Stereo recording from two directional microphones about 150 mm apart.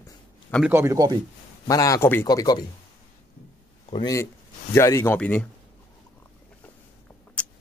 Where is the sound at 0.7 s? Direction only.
20° right (ahead or behind).